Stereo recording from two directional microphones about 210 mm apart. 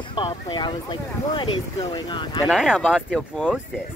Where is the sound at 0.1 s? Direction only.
20° left (ahead or behind).